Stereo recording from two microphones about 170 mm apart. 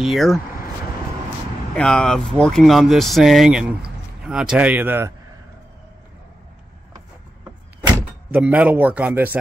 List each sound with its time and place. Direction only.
0.0 s speech: centre (ahead or behind)
1.8 s speech: 5° left (ahead or behind); by 5.1 s 10° right (ahead or behind)
8.0 s speech: 10° right (ahead or behind)